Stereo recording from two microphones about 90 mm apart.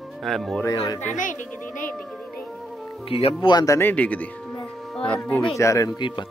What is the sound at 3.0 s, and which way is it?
Speech, 90° left.